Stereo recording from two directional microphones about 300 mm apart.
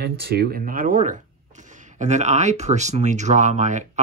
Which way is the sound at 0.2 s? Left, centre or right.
Right.